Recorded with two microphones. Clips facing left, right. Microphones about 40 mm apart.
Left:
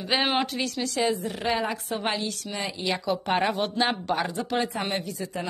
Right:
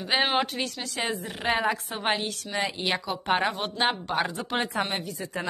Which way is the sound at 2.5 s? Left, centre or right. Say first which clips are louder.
Right 3 dB; right.